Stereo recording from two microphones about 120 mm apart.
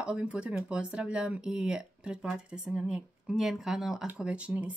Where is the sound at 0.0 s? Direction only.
10° right (ahead or behind).